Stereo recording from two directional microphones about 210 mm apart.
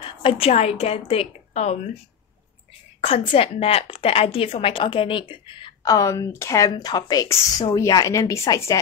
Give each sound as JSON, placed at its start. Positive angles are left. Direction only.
{"t": 0.2, "sound": "a woman's voice", "side_deg": 25}
{"t": 3.0, "sound": "a woman's voice", "side_deg": 25}